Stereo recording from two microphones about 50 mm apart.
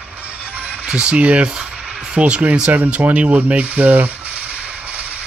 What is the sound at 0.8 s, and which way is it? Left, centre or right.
Speech, centre.